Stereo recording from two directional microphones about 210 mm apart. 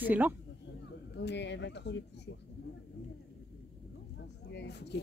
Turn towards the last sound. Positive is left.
turn(degrees=55)  # may be behind; listen again after turning